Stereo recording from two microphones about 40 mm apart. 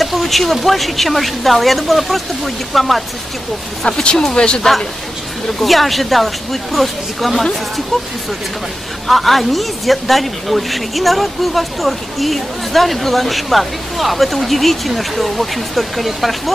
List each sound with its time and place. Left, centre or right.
0.0 s a woman's voice: centre
3.8 s speech: left
5.6 s a woman's voice: centre
9.0 s a woman's voice: centre